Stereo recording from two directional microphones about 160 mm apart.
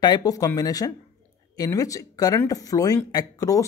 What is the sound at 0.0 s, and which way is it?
Speech, 25° left (ahead or behind).